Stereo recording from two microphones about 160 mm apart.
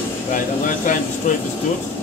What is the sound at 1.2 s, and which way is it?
Speech, 50° left (ahead or behind).